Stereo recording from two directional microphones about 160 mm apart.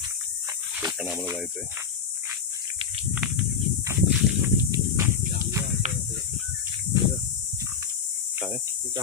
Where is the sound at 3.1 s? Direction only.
5° right (ahead or behind).